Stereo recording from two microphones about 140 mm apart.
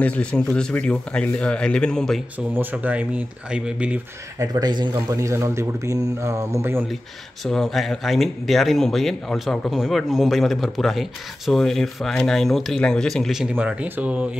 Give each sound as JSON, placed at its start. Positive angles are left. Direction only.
{"t": 0.0, "sound": "speech", "side_deg": 10}
{"t": 2.3, "sound": "speech", "side_deg": -10}
{"t": 4.4, "sound": "speech", "side_deg": -30}
{"t": 7.4, "sound": "speech", "side_deg": 0}